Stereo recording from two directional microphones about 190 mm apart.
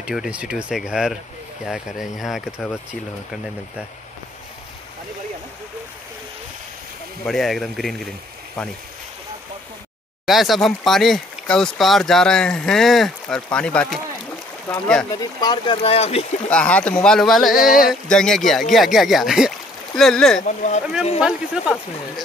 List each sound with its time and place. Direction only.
0.0 s speech: 5° right (ahead or behind)
7.2 s speech: centre (ahead or behind)
10.2 s speech: centre (ahead or behind)
15.4 s speech: 25° left (ahead or behind)
16.4 s speech: 5° left (ahead or behind)
17.6 s speech: 50° left (ahead or behind)
18.0 s speech: 5° left (ahead or behind)
20.4 s speech: 40° left (ahead or behind)
21.2 s speech: centre (ahead or behind)